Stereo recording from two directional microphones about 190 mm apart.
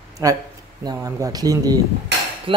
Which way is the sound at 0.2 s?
15° right (ahead or behind).